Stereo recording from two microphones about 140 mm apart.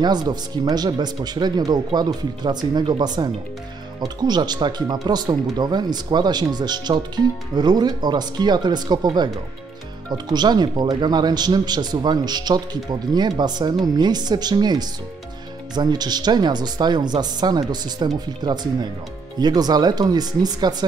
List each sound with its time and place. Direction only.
0.0 s speech: 30° right (ahead or behind)